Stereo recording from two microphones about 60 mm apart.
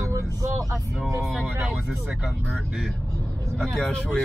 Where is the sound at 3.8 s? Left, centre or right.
Left.